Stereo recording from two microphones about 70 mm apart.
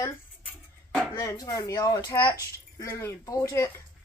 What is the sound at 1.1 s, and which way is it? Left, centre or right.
Speech, left.